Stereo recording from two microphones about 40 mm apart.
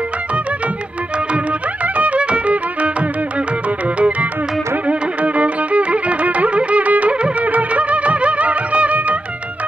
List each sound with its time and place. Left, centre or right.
2.0 s music: right